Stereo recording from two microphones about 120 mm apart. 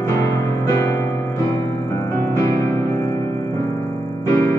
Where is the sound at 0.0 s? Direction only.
25° left (ahead or behind).